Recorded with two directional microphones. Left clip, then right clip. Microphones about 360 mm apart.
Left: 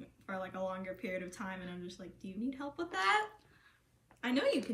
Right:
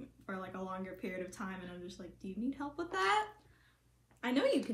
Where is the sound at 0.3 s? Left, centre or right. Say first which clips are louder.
Left 3 dB; centre.